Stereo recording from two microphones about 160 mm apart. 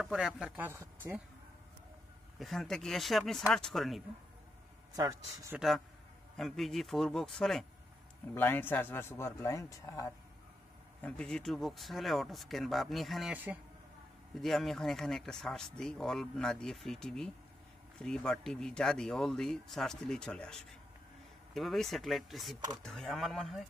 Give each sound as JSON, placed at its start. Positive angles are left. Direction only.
{"t": 0.0, "sound": "speech", "side_deg": -5}
{"t": 2.3, "sound": "speech", "side_deg": 0}
{"t": 4.9, "sound": "speech", "side_deg": -25}
{"t": 5.6, "sound": "speech", "side_deg": 0}
{"t": 8.4, "sound": "a man's voice", "side_deg": 10}
{"t": 11.0, "sound": "speech", "side_deg": 5}
{"t": 14.4, "sound": "speech", "side_deg": 0}